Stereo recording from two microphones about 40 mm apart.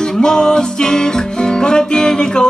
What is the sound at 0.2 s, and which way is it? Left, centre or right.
Music, centre.